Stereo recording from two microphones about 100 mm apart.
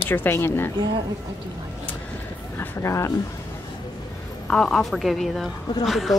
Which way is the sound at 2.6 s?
30° left (ahead or behind).